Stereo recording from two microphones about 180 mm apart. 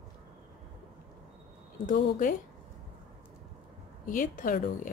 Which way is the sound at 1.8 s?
50° left (ahead or behind).